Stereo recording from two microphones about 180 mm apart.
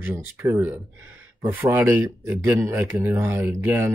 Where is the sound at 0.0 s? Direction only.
10° right (ahead or behind).